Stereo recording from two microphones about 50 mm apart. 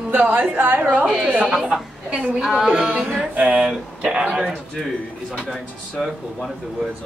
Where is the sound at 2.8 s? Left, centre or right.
Right.